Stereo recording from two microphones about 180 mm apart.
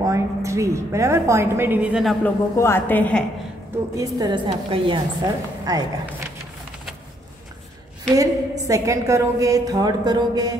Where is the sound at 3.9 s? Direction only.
20° right (ahead or behind).